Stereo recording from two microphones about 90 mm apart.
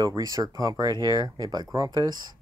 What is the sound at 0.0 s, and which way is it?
Speech, 40° right (ahead or behind).